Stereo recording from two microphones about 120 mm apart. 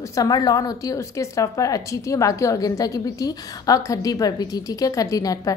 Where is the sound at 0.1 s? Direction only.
30° left (ahead or behind).